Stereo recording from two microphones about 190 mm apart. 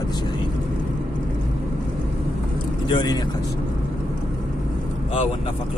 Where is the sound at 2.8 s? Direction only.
25° left (ahead or behind).